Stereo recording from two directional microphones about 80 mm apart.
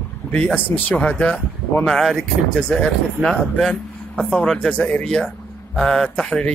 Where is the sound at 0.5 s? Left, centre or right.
Left.